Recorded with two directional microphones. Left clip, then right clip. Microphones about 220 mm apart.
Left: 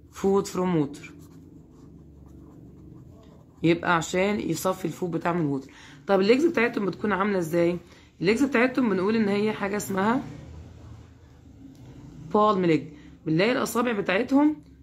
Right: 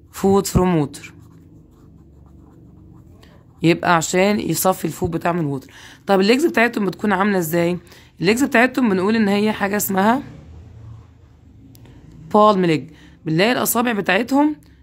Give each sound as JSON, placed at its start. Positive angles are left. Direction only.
{"t": 0.1, "sound": "speech", "side_deg": -45}
{"t": 3.6, "sound": "speech", "side_deg": -45}
{"t": 12.3, "sound": "speech", "side_deg": -45}